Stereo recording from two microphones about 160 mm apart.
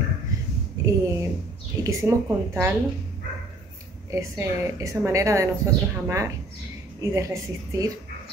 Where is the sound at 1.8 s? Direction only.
20° right (ahead or behind).